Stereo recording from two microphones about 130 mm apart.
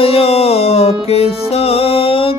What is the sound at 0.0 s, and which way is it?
Music, 50° left (ahead or behind).